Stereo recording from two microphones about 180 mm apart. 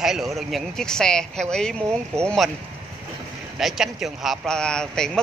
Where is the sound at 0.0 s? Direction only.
Centre (ahead or behind).